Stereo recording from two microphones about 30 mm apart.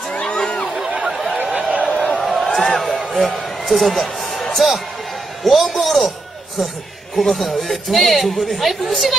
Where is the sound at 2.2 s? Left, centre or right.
Centre.